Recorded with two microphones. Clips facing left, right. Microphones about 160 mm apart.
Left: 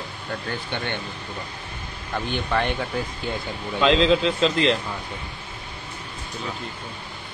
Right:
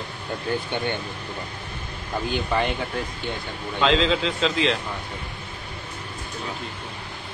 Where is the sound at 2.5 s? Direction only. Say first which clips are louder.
Left 2 dB; centre (ahead or behind).